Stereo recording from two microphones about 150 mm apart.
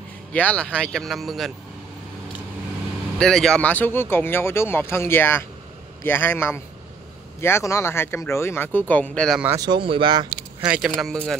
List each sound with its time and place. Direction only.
0.3 s speech: 10° left (ahead or behind)
3.2 s speech: 5° left (ahead or behind)
9.6 s speech: 30° right (ahead or behind)
10.7 s speech: centre (ahead or behind)